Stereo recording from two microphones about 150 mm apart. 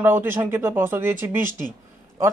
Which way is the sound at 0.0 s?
15° right (ahead or behind).